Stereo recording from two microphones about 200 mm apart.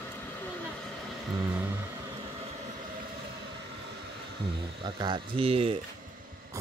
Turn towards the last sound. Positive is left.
turn(degrees=-30)  # may be behind; listen again after turning